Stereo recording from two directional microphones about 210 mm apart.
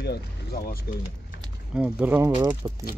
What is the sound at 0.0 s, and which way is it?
Speech, 50° left (ahead or behind).